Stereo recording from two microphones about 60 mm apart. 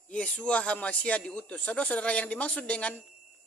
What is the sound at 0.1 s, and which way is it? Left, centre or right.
Speech, centre.